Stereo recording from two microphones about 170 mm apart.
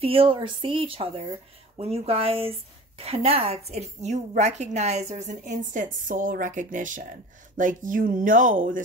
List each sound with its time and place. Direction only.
0.0 s a woman's voice: 35° right (ahead or behind); by 8.8 s 50° right (ahead or behind)